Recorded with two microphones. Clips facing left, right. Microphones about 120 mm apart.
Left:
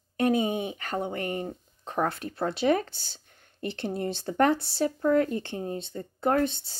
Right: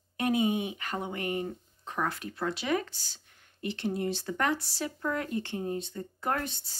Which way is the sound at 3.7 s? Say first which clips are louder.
Left 1 dB; 30° left (ahead or behind).